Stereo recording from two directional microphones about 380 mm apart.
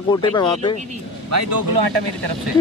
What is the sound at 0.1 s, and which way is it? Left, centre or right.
Speech, centre.